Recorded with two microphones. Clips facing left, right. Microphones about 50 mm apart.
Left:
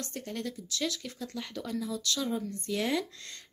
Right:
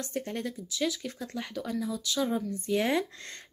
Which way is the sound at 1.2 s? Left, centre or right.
Right.